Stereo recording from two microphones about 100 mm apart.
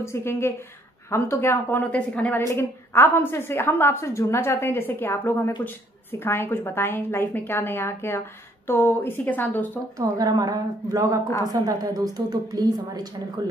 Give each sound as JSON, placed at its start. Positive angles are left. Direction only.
{"t": 0.0, "sound": "a woman's voice", "side_deg": 25}
{"t": 2.5, "sound": "a woman's voice", "side_deg": 25}
{"t": 9.9, "sound": "a woman's voice", "side_deg": -40}